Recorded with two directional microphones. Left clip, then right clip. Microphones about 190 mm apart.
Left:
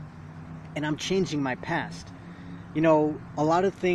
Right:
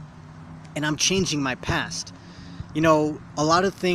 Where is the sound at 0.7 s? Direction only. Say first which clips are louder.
Right 4 dB; 25° right (ahead or behind).